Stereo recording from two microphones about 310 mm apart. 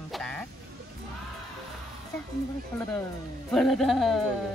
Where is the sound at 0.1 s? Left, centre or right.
Centre.